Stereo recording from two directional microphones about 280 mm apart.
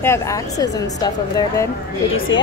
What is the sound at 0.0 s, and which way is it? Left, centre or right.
A woman's voice, centre.